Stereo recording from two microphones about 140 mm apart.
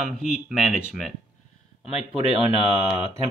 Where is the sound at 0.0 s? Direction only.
5° right (ahead or behind).